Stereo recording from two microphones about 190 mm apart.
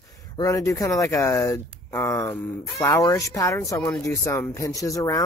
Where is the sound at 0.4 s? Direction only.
15° left (ahead or behind).